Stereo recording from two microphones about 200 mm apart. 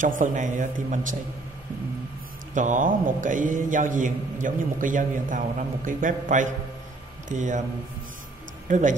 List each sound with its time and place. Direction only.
0.0 s a man's voice: 40° right (ahead or behind)
2.5 s a man's voice: 40° right (ahead or behind)
8.6 s speech: 40° right (ahead or behind)